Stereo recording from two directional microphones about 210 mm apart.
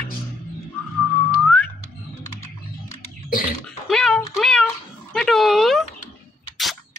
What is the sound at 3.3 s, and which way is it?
Cough, 45° left (ahead or behind).